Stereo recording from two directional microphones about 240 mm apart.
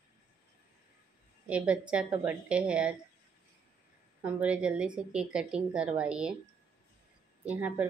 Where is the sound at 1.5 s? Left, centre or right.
Centre.